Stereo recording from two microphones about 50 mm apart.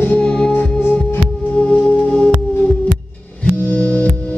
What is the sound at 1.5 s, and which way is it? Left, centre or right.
Music, left.